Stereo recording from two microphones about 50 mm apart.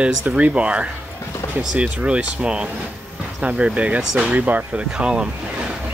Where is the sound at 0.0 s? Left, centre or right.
Right.